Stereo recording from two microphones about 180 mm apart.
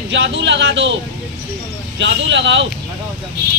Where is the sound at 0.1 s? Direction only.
90° right.